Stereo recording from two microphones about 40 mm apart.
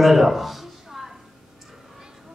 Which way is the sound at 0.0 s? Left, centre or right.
Centre.